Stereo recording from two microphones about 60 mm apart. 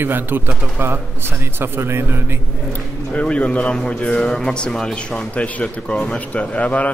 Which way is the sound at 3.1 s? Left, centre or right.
Centre.